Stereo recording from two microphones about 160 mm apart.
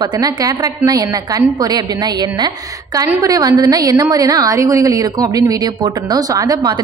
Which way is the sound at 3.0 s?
20° right (ahead or behind).